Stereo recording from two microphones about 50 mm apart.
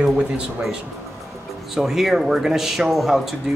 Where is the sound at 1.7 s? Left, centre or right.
Centre.